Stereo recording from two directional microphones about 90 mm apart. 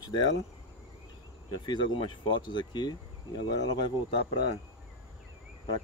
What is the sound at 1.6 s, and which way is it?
Speech, 65° left (ahead or behind).